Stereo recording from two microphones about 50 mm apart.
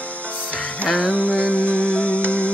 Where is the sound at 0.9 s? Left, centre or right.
Left.